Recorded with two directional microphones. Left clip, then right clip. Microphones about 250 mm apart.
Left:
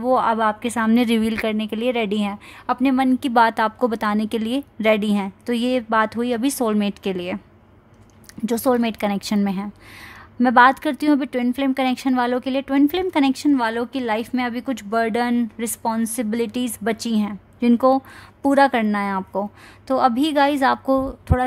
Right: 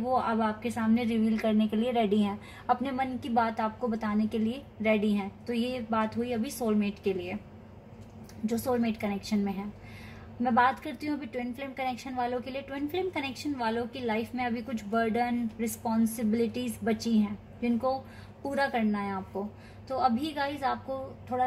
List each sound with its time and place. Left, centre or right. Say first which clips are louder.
0.1 s a woman's voice: left 11 dB; left
8.5 s a woman's voice: left 10 dB; left